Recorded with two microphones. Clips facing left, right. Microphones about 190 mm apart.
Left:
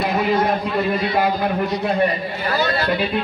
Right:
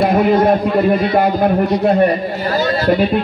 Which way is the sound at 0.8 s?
50° right (ahead or behind).